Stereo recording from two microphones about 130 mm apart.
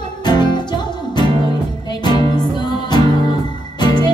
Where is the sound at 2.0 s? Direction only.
35° left (ahead or behind).